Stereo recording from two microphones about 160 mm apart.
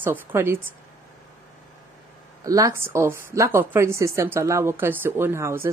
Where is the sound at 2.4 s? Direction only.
20° right (ahead or behind).